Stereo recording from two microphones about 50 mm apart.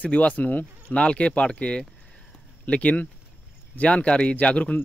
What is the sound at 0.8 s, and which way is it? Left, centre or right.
Speech, left.